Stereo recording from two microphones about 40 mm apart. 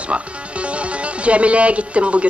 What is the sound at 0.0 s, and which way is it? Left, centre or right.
Speech, right.